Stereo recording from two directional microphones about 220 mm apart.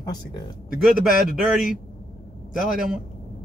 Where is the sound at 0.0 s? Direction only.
20° left (ahead or behind).